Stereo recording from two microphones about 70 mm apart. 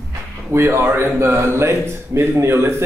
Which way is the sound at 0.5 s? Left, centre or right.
Right.